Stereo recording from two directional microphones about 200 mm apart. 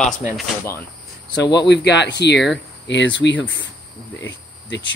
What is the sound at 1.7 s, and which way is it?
Speech, 60° left (ahead or behind).